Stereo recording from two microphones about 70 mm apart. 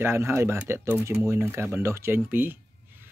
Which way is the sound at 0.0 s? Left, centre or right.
Right.